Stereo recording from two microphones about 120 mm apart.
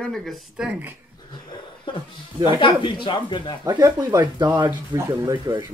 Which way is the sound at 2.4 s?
40° left (ahead or behind).